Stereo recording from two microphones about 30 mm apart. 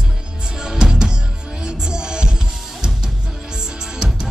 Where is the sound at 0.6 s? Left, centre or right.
Right.